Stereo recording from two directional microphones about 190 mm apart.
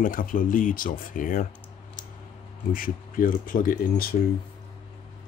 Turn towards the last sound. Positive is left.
turn(degrees=50)  # may be behind; listen again after turning